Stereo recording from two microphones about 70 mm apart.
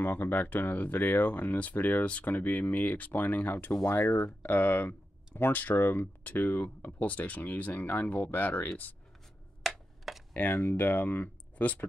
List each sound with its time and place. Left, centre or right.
0.0 s speech: left
9.6 s a sound: centre
10.5 s speech: left